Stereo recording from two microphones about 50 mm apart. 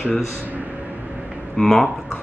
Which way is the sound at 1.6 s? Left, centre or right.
Centre.